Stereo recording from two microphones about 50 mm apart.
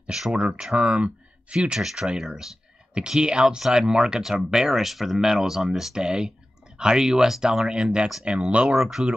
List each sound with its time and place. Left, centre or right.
0.3 s speech: centre
1.8 s speech: centre
8.7 s speech: centre